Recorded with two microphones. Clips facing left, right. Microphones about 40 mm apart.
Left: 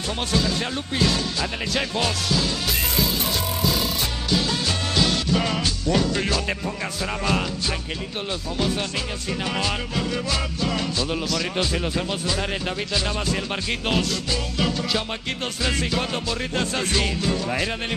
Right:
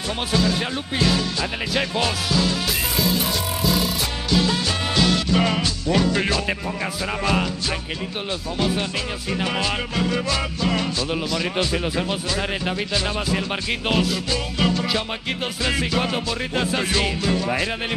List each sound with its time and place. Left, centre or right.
0.3 s music: centre
5.0 s music: centre
7.0 s music: centre